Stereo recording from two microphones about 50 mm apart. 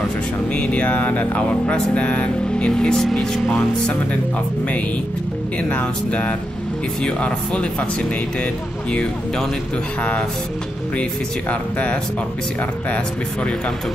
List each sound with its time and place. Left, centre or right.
0.5 s music: left
5.6 s music: left